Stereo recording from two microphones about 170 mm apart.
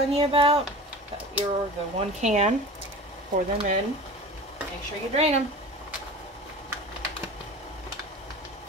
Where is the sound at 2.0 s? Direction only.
40° right (ahead or behind).